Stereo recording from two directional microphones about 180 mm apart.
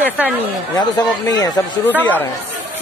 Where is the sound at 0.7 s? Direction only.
20° left (ahead or behind).